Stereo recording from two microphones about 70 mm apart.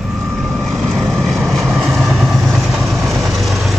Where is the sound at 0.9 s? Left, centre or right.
Right.